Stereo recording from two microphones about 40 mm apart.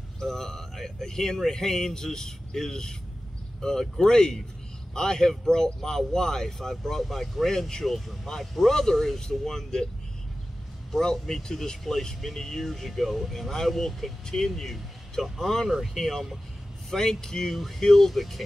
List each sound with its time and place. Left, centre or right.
0.2 s speech: centre
4.0 s speech: centre
10.9 s speech: centre